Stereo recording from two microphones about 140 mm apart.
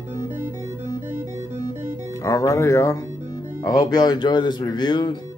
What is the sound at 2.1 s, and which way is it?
Music, 25° left (ahead or behind).